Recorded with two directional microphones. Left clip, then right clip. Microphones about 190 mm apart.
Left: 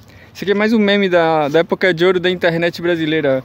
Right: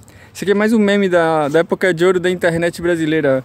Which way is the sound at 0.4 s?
15° right (ahead or behind).